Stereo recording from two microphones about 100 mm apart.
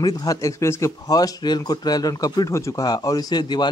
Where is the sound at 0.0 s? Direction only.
35° left (ahead or behind).